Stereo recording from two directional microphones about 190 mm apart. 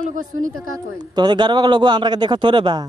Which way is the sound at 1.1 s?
25° right (ahead or behind).